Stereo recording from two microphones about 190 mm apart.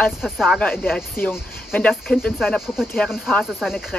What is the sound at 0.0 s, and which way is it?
Speech, centre (ahead or behind).